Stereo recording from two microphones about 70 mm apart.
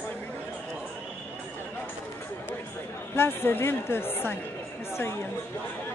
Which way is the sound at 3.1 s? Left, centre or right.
Left.